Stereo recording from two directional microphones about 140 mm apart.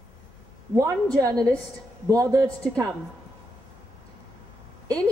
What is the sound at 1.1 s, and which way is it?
A woman's voice, 25° right (ahead or behind).